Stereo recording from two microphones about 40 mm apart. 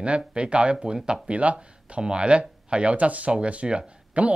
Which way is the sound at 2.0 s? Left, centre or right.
Right.